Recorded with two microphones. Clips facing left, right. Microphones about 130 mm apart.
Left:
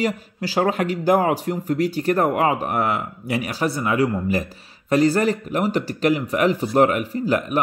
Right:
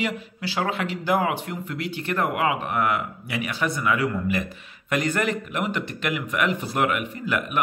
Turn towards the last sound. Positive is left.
turn(degrees=35)  # may be behind; listen again after turning